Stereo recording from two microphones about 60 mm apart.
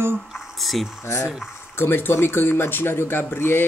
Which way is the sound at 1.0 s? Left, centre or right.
Left.